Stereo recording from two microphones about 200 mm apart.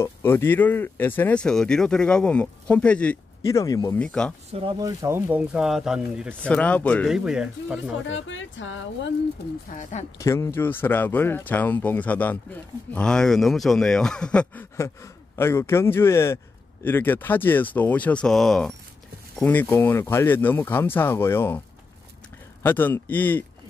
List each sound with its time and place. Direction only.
0.0 s speech: 10° left (ahead or behind)
4.0 s speech: 5° left (ahead or behind)
4.5 s speech: 25° right (ahead or behind); by 6.3 s 5° right (ahead or behind)
6.4 s speech: 5° left (ahead or behind)
7.2 s speech: 5° right (ahead or behind)
8.1 s speech: 70° left (ahead or behind)
9.8 s speech: 35° left (ahead or behind)
10.1 s speech: 15° left (ahead or behind)
22.6 s speech: 10° left (ahead or behind)